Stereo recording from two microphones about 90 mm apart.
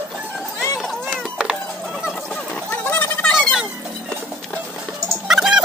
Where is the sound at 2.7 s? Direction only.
20° left (ahead or behind).